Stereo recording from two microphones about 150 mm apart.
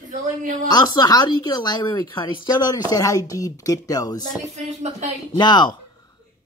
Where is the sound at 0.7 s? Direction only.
25° left (ahead or behind).